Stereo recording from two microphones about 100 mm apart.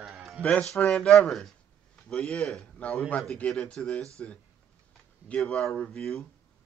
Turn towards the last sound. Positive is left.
turn(degrees=5)  # may be behind; listen again after turning